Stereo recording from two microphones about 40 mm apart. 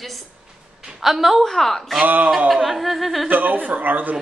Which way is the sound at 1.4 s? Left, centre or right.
Centre.